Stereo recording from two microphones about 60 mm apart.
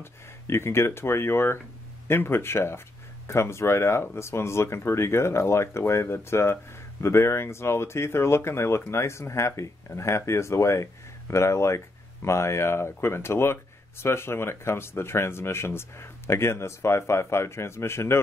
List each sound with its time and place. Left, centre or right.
0.0 s speech: left